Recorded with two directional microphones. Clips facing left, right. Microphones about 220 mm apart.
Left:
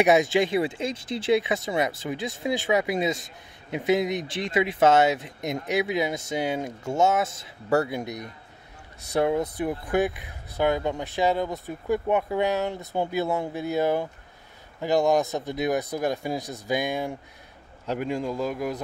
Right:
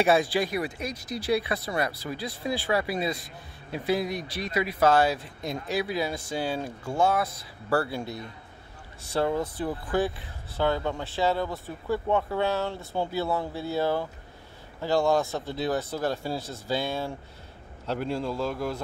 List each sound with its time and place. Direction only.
0.0 s speech: 20° left (ahead or behind)